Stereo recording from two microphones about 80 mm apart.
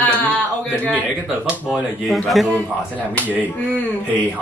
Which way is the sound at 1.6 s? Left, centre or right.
Centre.